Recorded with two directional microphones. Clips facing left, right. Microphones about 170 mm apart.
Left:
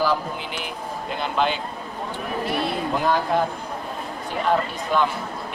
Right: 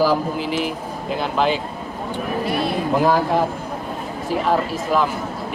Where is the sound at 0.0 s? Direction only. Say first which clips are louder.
Right 5 dB; centre (ahead or behind).